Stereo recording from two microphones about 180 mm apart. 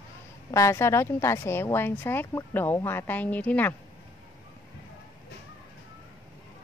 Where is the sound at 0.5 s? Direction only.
15° left (ahead or behind).